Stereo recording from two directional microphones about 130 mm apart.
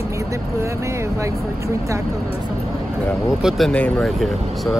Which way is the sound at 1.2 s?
25° right (ahead or behind).